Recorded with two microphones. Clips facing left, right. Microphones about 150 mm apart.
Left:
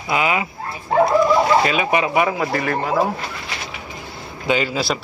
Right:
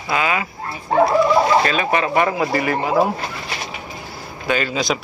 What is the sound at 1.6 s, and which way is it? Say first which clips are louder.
Speech: even; 15° left (ahead or behind).